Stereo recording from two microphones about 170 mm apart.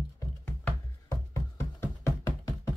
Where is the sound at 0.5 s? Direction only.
15° left (ahead or behind).